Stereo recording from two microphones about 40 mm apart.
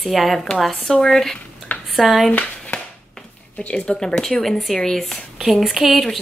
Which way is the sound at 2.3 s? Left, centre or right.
Left.